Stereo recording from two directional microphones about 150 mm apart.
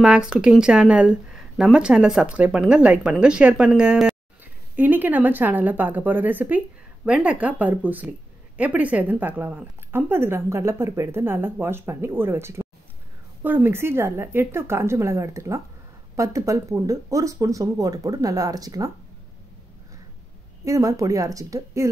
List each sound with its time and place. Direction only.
0.0 s a woman's voice: 5° right (ahead or behind); by 18.9 s 25° right (ahead or behind)
20.6 s speech: 20° right (ahead or behind)